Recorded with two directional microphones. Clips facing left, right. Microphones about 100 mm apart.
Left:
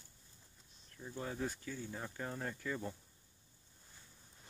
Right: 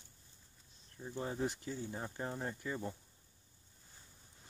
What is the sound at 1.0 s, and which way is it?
Speech, 20° right (ahead or behind).